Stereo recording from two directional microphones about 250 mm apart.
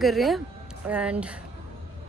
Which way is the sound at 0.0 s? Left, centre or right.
Centre.